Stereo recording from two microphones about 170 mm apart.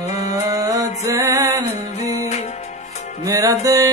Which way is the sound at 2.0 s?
40° left (ahead or behind).